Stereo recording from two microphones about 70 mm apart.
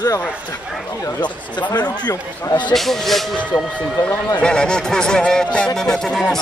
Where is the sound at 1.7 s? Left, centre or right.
Left.